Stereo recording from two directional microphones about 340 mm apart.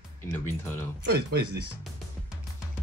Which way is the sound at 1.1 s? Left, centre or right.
Right.